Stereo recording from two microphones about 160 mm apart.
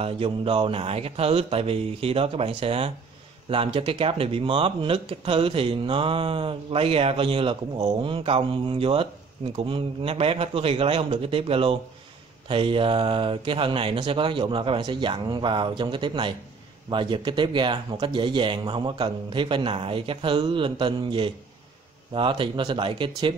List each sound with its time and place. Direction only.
0.0 s speech: 35° right (ahead or behind)